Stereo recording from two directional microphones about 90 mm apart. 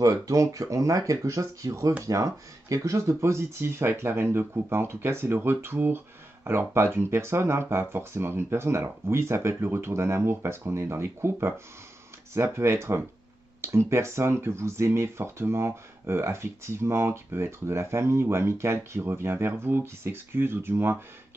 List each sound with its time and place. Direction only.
0.0 s speech: 40° right (ahead or behind)